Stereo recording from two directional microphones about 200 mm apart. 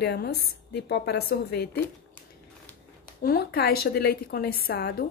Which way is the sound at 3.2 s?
50° left (ahead or behind).